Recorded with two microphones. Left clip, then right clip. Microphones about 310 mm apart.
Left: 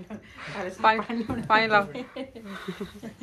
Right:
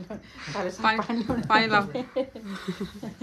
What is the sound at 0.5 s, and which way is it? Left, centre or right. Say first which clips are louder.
Speech: right 4 dB; right.